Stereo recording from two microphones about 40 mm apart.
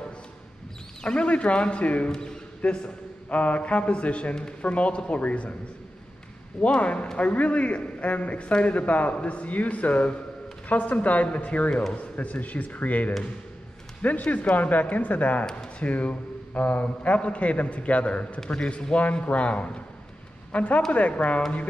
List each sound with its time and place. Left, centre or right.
1.0 s speech: left
2.0 s speech: centre
2.6 s a man's voice: left
6.6 s a man's voice: left
18.4 s a man's voice: left